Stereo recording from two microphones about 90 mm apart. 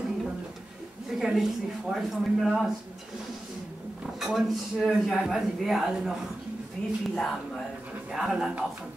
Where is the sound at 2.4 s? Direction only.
Centre (ahead or behind).